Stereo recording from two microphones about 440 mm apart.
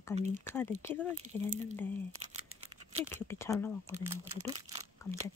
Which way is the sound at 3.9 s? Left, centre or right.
Centre.